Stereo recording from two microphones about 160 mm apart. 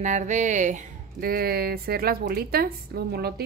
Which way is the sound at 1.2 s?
70° right (ahead or behind).